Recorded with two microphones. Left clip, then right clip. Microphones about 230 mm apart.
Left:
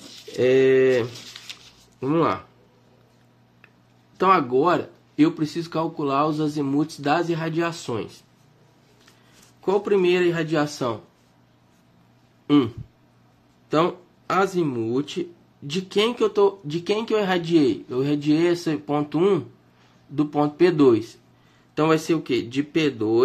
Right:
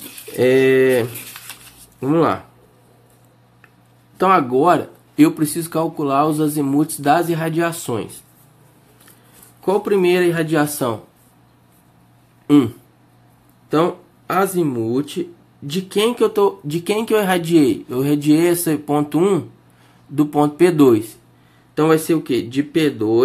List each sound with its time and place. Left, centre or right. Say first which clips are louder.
0.4 s speech: right 4 dB; centre
4.2 s speech: right 4 dB; centre
9.6 s speech: right 4 dB; centre
12.4 s a sound: right 5 dB; centre
13.7 s speech: right 4 dB; centre